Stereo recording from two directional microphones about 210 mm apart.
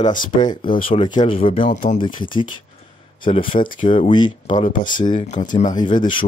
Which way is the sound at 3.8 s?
25° left (ahead or behind).